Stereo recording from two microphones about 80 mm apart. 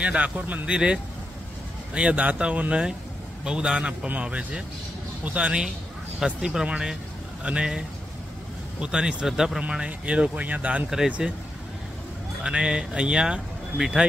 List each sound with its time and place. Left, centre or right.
0.0 s speech: centre
2.0 s speech: centre
8.8 s speech: centre
12.4 s speech: centre